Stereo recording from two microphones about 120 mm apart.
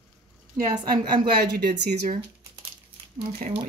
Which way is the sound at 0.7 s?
40° right (ahead or behind).